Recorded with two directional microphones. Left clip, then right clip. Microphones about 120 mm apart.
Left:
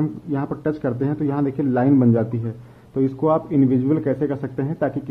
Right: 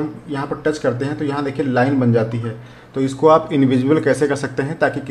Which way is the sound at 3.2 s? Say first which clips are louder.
Right 7 dB; centre (ahead or behind).